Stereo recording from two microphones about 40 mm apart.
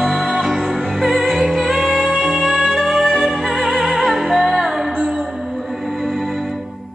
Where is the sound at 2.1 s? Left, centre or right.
Right.